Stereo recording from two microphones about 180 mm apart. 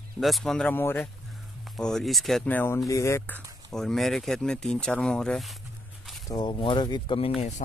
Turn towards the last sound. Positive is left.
turn(degrees=30)  # may be behind; listen again after turning